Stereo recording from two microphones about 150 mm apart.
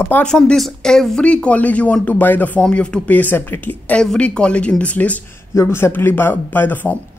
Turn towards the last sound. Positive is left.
turn(degrees=10)  # may be behind; listen again after turning